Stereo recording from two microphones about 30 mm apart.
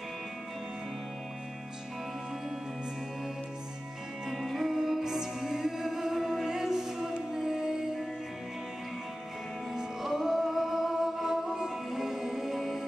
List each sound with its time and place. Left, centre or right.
4.3 s music: centre
9.8 s music: centre